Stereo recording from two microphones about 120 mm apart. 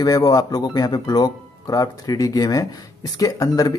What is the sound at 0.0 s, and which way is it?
Speech, 30° left (ahead or behind).